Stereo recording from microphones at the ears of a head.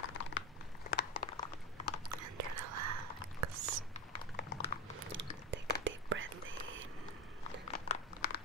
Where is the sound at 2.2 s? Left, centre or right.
Right.